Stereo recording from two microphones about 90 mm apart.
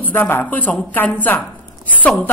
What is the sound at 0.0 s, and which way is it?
A woman's voice, 20° left (ahead or behind).